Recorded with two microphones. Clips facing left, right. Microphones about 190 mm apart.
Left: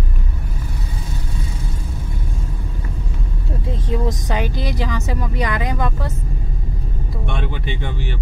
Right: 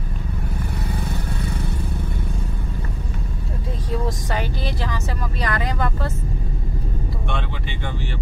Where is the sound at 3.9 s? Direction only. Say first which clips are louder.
Left 3 dB; 20° left (ahead or behind).